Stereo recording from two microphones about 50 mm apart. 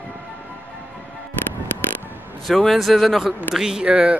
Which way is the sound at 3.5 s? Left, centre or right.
Centre.